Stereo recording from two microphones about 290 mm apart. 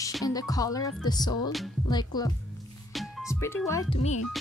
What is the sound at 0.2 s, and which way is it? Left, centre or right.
Speech, centre.